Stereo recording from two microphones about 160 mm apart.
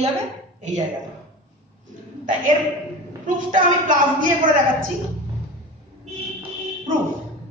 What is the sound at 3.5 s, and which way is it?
Speech, 55° right (ahead or behind).